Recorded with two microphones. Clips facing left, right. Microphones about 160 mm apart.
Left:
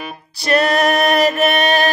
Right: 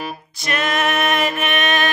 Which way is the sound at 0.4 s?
35° left (ahead or behind).